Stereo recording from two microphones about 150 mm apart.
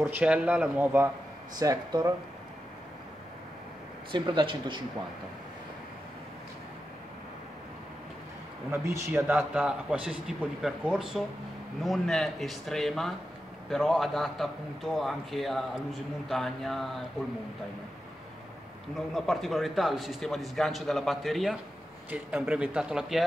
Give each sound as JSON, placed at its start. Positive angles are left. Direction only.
{"t": 0.0, "sound": "a man's voice", "side_deg": -10}
{"t": 1.6, "sound": "speech", "side_deg": -25}
{"t": 4.1, "sound": "speech", "side_deg": -35}
{"t": 8.7, "sound": "a man's voice", "side_deg": -20}
{"t": 18.9, "sound": "a man's voice", "side_deg": 0}